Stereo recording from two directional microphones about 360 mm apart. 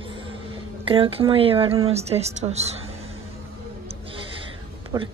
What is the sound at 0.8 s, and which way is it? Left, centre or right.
Speech, centre.